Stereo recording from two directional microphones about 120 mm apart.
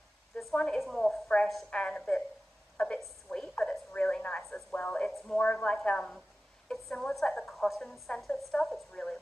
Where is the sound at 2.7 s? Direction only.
10° left (ahead or behind).